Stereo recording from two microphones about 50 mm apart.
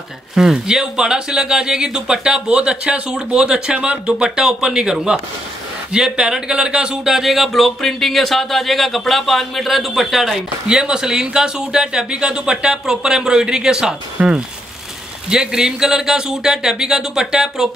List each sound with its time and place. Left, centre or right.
0.3 s speech: centre